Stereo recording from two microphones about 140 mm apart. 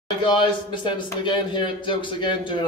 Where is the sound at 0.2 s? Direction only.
35° left (ahead or behind).